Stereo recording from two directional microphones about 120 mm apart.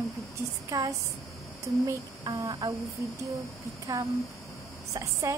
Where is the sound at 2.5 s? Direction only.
40° right (ahead or behind).